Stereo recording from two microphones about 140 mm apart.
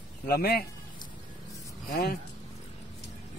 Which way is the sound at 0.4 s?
90° left.